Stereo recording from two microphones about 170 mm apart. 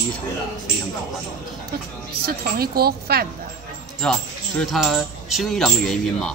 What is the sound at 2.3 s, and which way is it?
A woman's voice, 65° right (ahead or behind).